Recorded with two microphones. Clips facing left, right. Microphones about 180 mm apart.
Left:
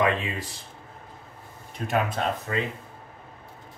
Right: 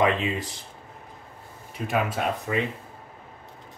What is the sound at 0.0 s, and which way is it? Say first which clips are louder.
Speech: right 2 dB; 20° right (ahead or behind).